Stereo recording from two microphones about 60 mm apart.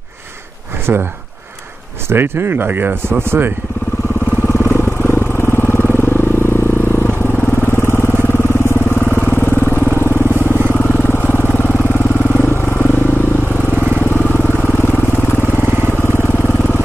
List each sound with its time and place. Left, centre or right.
0.9 s speech: right
2.0 s speech: right
4.5 s vehicle: left
13.7 s vehicle: right
14.0 s vehicle: left
15.6 s vehicle: right
16.0 s vehicle: left